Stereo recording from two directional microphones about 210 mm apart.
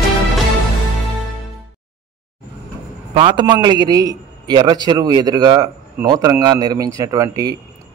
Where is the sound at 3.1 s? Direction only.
25° right (ahead or behind).